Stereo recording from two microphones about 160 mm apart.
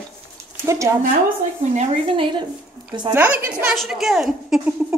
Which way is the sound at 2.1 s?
30° right (ahead or behind).